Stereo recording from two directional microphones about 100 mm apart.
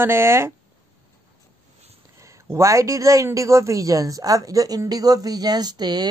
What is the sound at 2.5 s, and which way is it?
Speech, 30° right (ahead or behind).